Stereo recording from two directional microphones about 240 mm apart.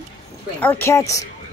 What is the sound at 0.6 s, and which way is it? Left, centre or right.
Speech, centre.